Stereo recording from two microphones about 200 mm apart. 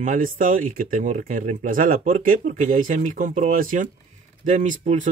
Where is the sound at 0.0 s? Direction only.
40° right (ahead or behind).